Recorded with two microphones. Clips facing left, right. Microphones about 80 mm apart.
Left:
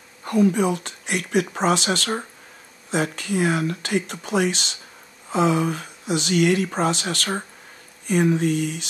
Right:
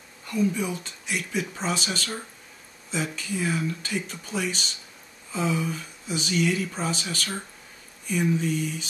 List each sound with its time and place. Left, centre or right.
0.2 s speech: left